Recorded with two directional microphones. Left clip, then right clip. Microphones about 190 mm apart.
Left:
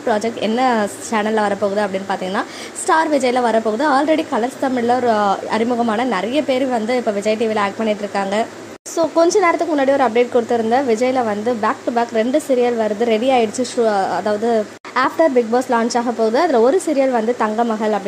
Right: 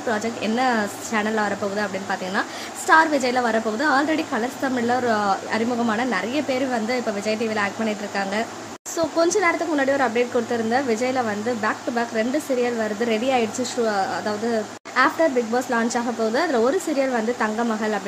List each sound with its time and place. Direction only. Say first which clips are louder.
0.1 s speech: left 6 dB; 20° left (ahead or behind)